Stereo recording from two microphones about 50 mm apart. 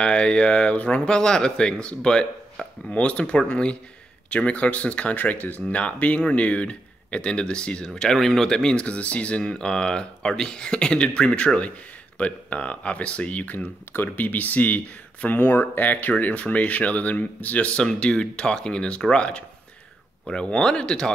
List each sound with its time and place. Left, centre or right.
0.0 s speech: left
8.8 s speech: left